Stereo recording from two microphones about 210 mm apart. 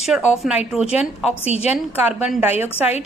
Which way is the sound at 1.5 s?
30° left (ahead or behind).